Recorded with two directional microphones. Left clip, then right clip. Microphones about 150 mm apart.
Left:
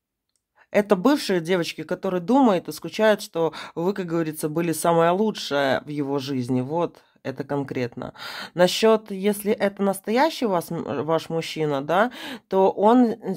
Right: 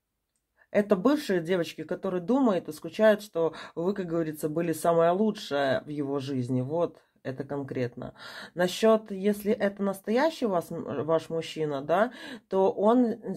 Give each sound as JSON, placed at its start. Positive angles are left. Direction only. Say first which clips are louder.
{"t": 0.7, "sound": "speech", "louder": "left 5 dB", "side_deg": 40}